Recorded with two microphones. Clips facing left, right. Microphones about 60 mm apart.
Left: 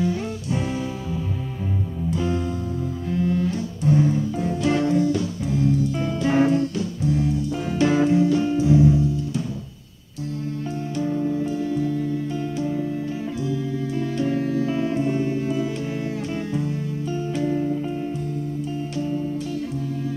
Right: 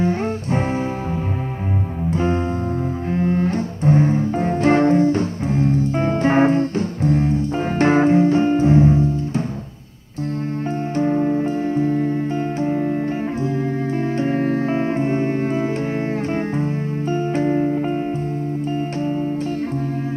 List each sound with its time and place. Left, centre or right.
0.0 s music: right
2.0 s music: right
3.1 s double bass: right
11.0 s music: right